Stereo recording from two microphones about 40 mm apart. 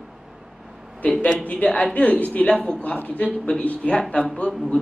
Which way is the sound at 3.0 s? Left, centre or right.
Left.